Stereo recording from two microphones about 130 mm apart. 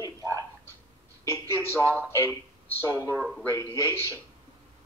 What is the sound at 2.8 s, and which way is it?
Speech, 20° left (ahead or behind).